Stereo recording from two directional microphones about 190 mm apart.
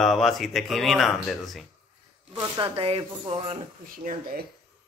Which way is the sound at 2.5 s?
30° right (ahead or behind).